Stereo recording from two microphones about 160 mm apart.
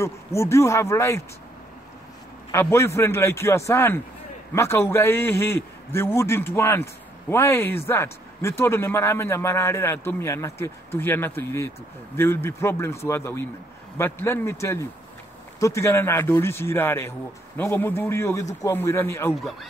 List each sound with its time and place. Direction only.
0.0 s a man's voice: 15° left (ahead or behind)
2.5 s a man's voice: 15° left (ahead or behind)